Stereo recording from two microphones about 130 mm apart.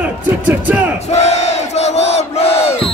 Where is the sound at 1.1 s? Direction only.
60° left (ahead or behind).